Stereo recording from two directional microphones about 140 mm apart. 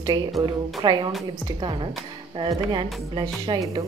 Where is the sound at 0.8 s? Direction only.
35° right (ahead or behind).